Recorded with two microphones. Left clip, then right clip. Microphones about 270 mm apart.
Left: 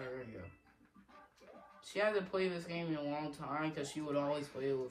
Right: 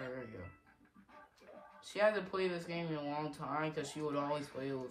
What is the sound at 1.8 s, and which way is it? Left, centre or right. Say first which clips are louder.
Speech: right 2 dB; centre.